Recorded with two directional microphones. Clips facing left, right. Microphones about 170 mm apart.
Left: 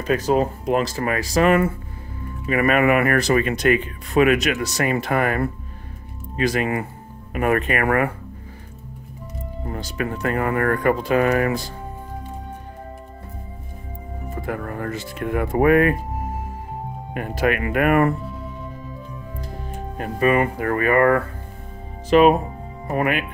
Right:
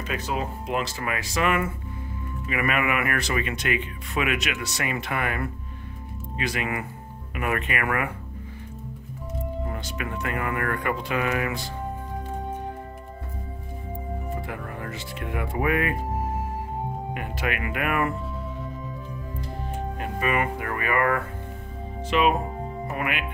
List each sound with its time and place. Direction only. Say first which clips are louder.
0.0 s speech: left 10 dB; 40° left (ahead or behind)
9.7 s speech: left 5 dB; 35° left (ahead or behind)
14.4 s speech: left 7 dB; 45° left (ahead or behind)
17.1 s speech: left 11 dB; 40° left (ahead or behind)
20.0 s speech: left 8 dB; 40° left (ahead or behind)